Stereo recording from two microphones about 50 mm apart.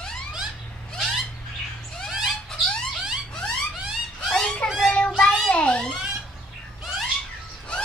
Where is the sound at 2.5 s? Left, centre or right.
Centre.